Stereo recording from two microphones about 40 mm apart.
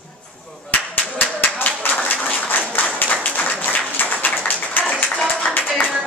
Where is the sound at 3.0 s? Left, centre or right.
Left.